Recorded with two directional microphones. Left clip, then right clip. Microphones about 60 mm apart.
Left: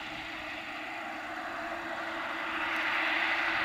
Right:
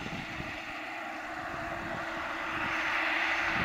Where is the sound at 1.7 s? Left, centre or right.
Centre.